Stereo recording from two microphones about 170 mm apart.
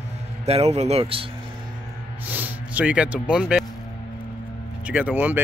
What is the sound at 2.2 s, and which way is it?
Speech, 10° right (ahead or behind).